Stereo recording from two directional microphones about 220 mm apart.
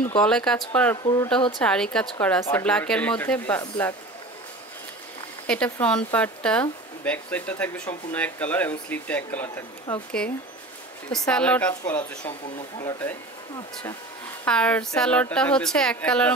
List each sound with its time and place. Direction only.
0.2 s a woman's voice: 5° left (ahead or behind)
1.0 s speech: 15° left (ahead or behind)
1.6 s speech: 5° left (ahead or behind)
5.5 s a woman's voice: 5° left (ahead or behind)
14.4 s a woman's voice: 5° left (ahead or behind)